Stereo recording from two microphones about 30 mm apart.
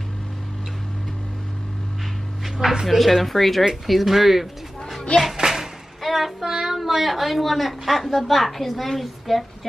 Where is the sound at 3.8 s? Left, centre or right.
Centre.